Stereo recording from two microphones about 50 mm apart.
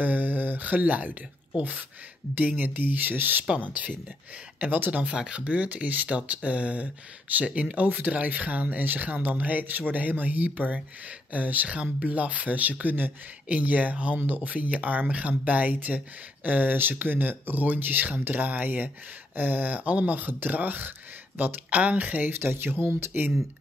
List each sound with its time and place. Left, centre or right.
0.0 s speech: right
5.0 s speech: centre
22.3 s speech: right